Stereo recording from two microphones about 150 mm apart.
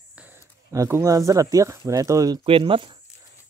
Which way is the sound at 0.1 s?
10° right (ahead or behind).